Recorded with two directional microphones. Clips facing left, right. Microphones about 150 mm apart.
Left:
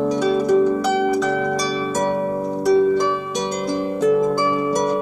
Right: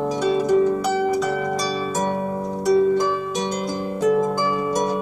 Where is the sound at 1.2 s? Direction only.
5° right (ahead or behind).